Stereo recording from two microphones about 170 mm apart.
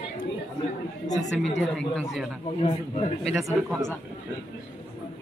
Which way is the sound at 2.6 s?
35° left (ahead or behind).